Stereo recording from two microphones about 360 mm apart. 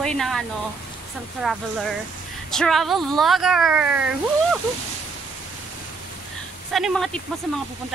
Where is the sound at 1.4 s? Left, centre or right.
Centre.